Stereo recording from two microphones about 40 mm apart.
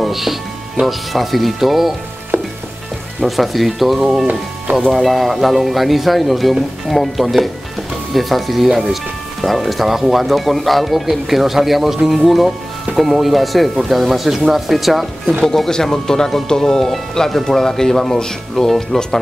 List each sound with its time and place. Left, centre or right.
0.0 s speech: centre
2.3 s frying: right
3.2 s speech: centre
15.4 s speech: centre